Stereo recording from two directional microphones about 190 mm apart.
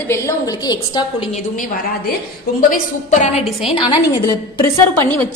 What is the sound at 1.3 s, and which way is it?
A woman's voice, 45° left (ahead or behind).